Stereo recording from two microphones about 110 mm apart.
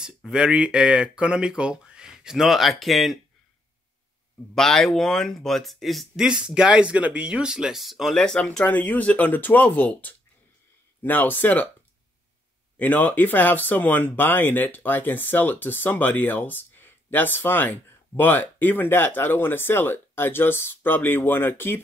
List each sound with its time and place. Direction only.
0.0 s speech: 5° right (ahead or behind)
4.6 s speech: 5° left (ahead or behind)
12.7 s speech: 15° left (ahead or behind)